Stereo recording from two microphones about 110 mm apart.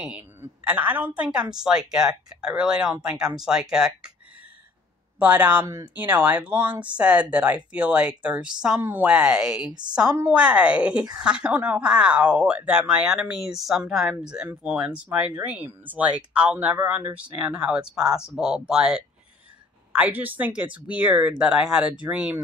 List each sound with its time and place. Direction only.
0.0 s speech: 10° right (ahead or behind)
5.2 s speech: 15° right (ahead or behind)
9.7 s a woman's voice: 40° right (ahead or behind)
10.3 s speech: 10° right (ahead or behind)